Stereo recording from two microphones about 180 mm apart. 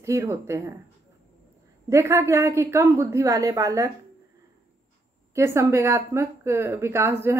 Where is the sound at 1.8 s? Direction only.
15° right (ahead or behind).